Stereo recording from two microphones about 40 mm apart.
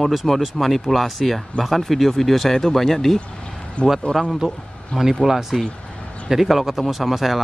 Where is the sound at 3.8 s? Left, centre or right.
Left.